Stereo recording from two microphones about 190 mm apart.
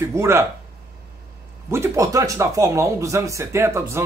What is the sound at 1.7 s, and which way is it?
Speech, 15° right (ahead or behind).